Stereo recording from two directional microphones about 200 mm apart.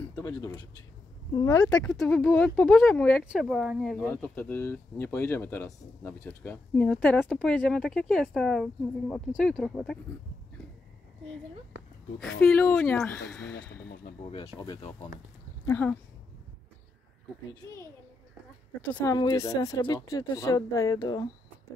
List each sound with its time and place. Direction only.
0.3 s speech: 15° left (ahead or behind)
1.7 s speech: 5° left (ahead or behind)
4.1 s speech: 10° left (ahead or behind)
12.2 s speech: 5° left (ahead or behind)
14.2 s speech: 30° left (ahead or behind)
15.6 s speech: 10° left (ahead or behind)
18.8 s speech: 5° left (ahead or behind)
19.1 s speech: 20° left (ahead or behind)